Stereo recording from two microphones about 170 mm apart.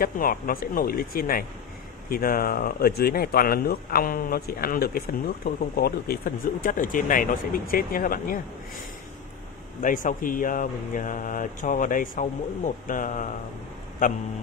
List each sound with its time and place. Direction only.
0.0 s speech: 55° left (ahead or behind)
9.8 s speech: 50° left (ahead or behind)